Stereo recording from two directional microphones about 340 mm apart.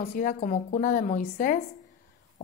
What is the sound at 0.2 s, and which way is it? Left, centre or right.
A woman's voice, left.